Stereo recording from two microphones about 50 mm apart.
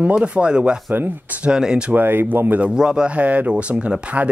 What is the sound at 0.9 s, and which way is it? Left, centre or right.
Speech, right.